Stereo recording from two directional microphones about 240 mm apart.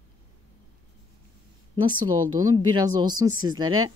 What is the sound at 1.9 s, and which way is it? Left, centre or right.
A woman's voice, centre.